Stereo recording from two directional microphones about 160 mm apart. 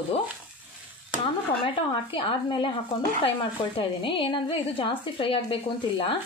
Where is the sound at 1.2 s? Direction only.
35° left (ahead or behind).